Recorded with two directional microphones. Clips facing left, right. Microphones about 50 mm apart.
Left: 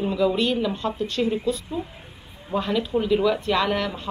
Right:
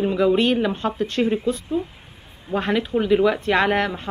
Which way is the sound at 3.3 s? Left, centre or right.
Right.